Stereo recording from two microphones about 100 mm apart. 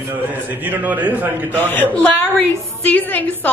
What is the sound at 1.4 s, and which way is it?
A woman's voice, 15° left (ahead or behind).